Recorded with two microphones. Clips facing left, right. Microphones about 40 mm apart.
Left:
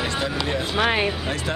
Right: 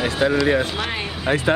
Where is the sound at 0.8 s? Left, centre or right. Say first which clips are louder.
Left 5 dB; left.